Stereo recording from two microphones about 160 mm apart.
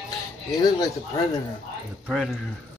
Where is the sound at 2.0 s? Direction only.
Centre (ahead or behind).